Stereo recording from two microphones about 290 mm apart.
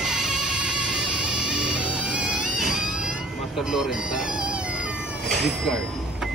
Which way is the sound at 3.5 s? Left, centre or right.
Centre.